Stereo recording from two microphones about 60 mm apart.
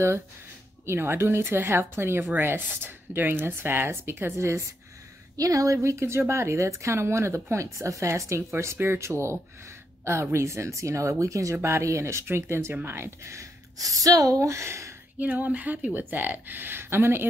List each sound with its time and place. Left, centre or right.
0.8 s speech: right
5.4 s speech: right
7.5 s a woman's voice: right
11.6 s speech: right
13.7 s a woman's voice: right
15.1 s speech: right